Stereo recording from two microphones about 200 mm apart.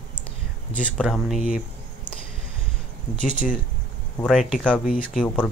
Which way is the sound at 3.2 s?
40° left (ahead or behind).